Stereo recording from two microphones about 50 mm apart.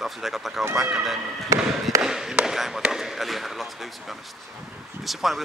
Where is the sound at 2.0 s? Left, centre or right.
Centre.